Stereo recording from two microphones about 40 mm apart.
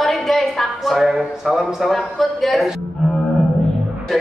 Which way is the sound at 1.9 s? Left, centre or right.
Centre.